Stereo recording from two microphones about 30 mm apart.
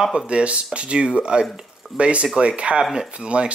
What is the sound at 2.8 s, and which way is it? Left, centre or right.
Speech, centre.